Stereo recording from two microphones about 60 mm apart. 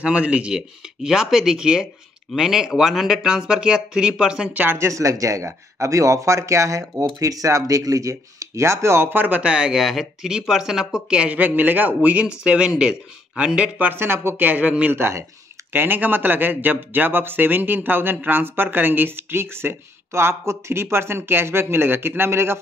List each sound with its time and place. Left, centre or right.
0.0 s speech: centre
4.7 s speech: right
9.4 s speech: centre
11.3 s a man's voice: right; by 13.7 s centre
13.7 s speech: right
14.4 s a man's voice: right
14.9 s speech: right
15.7 s speech: right